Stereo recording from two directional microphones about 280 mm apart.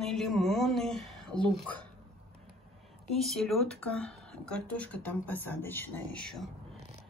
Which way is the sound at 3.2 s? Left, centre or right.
Centre.